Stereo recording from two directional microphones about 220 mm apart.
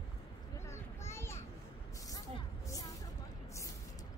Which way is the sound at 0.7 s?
10° left (ahead or behind).